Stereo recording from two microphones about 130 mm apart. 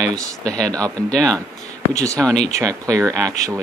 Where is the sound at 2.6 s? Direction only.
25° right (ahead or behind).